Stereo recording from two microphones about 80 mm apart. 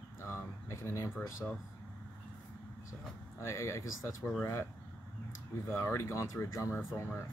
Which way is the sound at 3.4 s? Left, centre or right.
Left.